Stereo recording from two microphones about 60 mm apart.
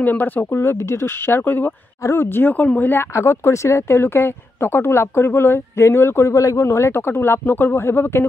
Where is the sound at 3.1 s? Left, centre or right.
Left.